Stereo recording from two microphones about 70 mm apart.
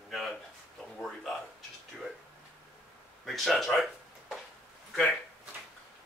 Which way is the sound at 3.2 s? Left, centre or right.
Centre.